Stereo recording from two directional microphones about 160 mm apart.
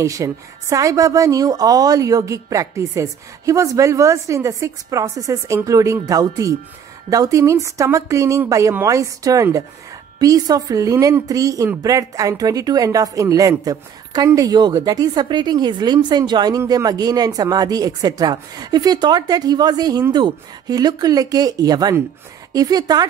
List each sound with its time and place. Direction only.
0.0 s a woman's voice: 20° right (ahead or behind)